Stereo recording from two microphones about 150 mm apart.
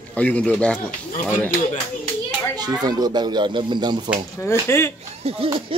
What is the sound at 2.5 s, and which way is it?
Speech, 25° right (ahead or behind).